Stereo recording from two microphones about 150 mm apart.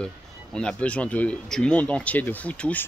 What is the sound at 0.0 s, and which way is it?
Speech, 5° left (ahead or behind).